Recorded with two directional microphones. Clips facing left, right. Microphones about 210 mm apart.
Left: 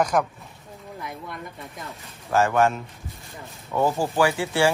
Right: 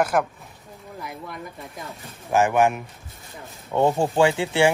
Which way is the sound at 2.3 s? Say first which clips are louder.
Right 1 dB; 15° right (ahead or behind).